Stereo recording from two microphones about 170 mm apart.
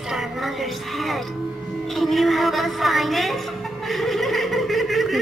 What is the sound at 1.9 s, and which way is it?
A woman's voice, centre (ahead or behind).